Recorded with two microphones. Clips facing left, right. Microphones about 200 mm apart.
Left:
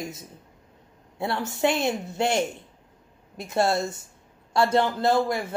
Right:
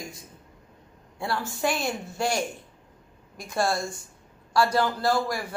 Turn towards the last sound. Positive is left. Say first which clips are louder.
# left 3 dB
turn(degrees=20)  # may be behind; listen again after turning